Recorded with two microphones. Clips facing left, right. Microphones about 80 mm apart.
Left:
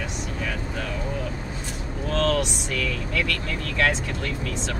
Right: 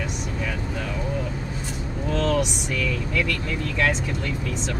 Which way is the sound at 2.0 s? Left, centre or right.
Centre.